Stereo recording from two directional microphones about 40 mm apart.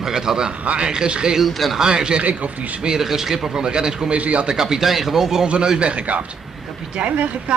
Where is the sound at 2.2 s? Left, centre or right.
Right.